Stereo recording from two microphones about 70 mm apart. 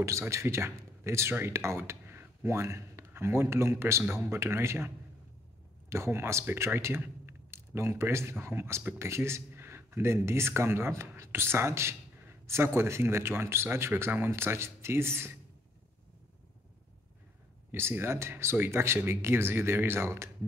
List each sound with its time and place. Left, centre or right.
0.0 s speech: right
17.6 s speech: right